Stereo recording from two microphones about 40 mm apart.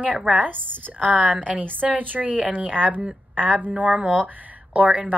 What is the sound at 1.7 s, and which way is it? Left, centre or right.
A woman's voice, right.